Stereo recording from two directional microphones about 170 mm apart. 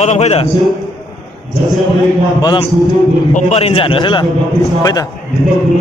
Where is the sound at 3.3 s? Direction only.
40° left (ahead or behind); by 5.1 s 20° left (ahead or behind).